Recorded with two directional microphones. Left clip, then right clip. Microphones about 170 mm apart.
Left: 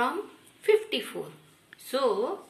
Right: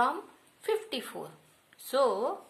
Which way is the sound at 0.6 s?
65° right (ahead or behind).